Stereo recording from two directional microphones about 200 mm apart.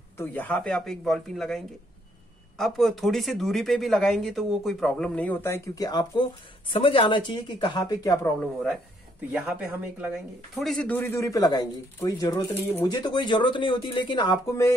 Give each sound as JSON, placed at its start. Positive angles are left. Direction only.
{"t": 0.2, "sound": "speech", "side_deg": 10}
{"t": 9.3, "sound": "speech", "side_deg": -5}